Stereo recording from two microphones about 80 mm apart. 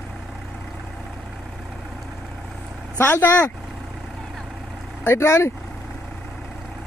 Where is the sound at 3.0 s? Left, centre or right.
Left.